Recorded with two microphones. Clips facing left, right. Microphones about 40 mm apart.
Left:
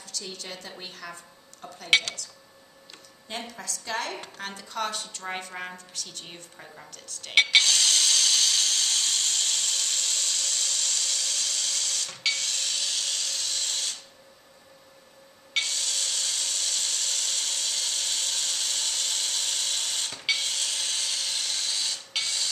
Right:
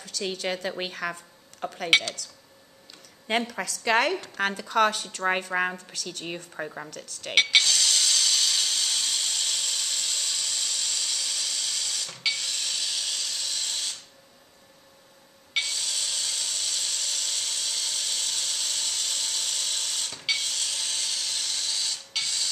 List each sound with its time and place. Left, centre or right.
0.2 s a woman's voice: right
1.9 s speech: centre
3.3 s a woman's voice: right
5.0 s a woman's voice: right
5.9 s a woman's voice: right
7.3 s tools: centre
15.5 s a sound: centre